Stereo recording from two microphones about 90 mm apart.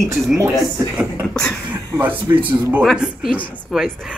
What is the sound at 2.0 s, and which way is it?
Speech, 20° right (ahead or behind).